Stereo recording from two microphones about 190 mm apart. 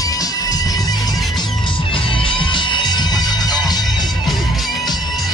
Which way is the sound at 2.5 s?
25° left (ahead or behind).